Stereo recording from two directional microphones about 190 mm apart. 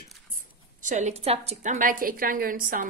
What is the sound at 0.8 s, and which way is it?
A woman's voice, 40° right (ahead or behind).